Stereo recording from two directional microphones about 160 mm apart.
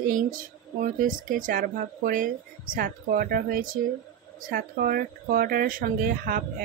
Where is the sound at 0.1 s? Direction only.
55° right (ahead or behind).